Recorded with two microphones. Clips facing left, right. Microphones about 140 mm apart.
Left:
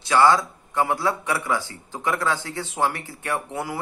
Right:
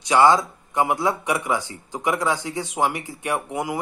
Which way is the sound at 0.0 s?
20° right (ahead or behind).